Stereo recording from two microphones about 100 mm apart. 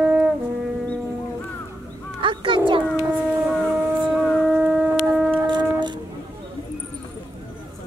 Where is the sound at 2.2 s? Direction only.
55° right (ahead or behind).